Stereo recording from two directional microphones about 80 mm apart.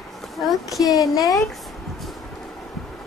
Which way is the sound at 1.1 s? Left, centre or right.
Left.